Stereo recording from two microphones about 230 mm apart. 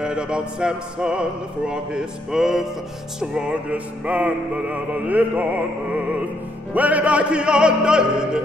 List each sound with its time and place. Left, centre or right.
0.0 s music: centre
6.7 s music: centre